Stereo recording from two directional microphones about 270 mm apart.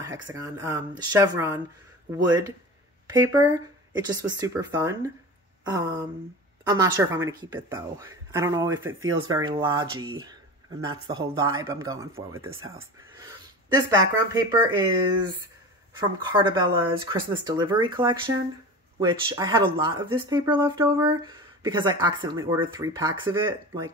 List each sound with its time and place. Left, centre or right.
0.0 s speech: centre
2.1 s speech: centre
13.8 s speech: centre
16.0 s speech: centre